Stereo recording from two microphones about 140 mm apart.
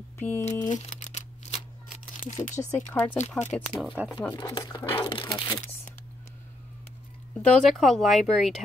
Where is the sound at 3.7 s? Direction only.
10° right (ahead or behind).